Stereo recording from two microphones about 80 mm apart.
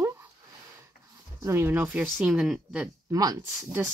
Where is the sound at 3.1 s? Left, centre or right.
Right.